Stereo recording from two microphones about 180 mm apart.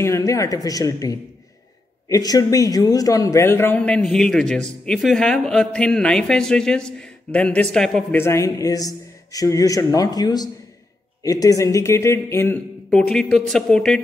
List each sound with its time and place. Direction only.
0.0 s a man's voice: 15° left (ahead or behind)
8.2 s a man's voice: 15° left (ahead or behind)